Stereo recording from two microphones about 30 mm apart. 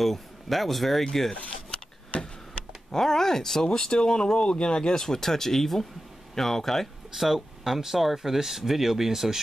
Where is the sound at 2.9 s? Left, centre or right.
Centre.